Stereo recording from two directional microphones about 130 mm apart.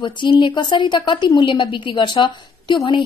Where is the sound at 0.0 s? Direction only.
40° left (ahead or behind).